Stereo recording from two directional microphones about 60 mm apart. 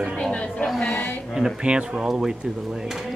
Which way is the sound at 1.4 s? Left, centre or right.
Centre.